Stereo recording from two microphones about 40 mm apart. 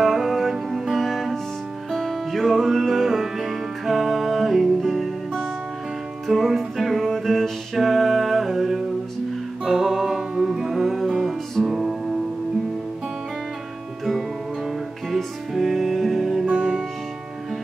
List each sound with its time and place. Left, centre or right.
0.0 s music: centre
6.2 s music: centre
15.1 s music: centre
16.4 s music: right